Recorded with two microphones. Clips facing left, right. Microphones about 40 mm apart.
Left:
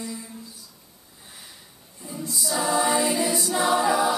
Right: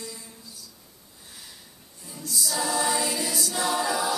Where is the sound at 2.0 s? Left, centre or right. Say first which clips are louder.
Left 2 dB; left.